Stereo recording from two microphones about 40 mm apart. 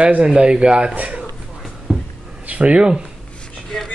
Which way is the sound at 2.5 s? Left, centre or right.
Right.